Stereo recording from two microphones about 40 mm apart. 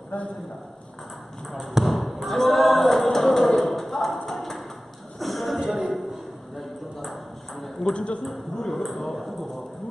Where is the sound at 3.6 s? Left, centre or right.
Centre.